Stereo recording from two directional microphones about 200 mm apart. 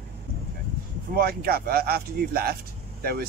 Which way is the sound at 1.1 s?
50° right (ahead or behind).